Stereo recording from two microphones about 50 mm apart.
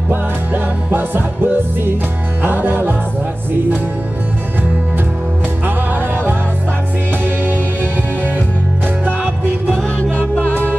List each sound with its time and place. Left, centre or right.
0.9 s music: right
10.1 s music: left